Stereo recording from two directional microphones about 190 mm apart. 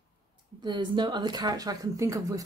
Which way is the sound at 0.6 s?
25° right (ahead or behind).